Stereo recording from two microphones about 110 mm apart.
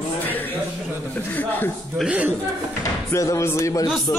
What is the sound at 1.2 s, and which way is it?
Speech, 20° left (ahead or behind).